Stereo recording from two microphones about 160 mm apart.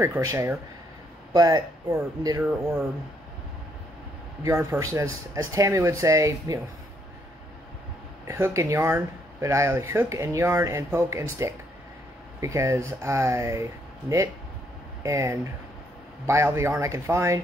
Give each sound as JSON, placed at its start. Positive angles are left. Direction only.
{"t": 0.0, "sound": "speech", "side_deg": -15}
{"t": 4.4, "sound": "speech", "side_deg": -20}
{"t": 8.3, "sound": "speech", "side_deg": -20}
{"t": 12.4, "sound": "speech", "side_deg": -20}